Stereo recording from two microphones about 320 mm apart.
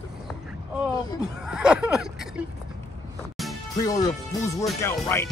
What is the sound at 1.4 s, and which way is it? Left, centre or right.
Speech, centre.